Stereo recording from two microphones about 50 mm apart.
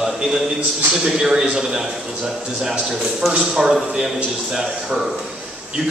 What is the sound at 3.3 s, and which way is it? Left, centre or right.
Speech, centre.